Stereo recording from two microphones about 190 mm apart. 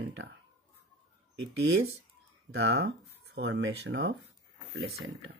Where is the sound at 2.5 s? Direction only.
90° right.